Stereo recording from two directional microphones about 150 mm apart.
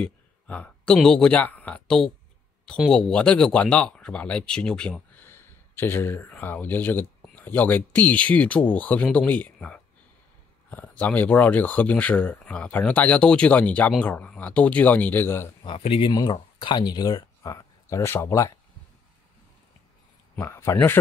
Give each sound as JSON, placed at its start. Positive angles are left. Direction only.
{"t": 0.0, "sound": "speech", "side_deg": 5}
{"t": 15.6, "sound": "speech", "side_deg": 35}
{"t": 20.3, "sound": "speech", "side_deg": 20}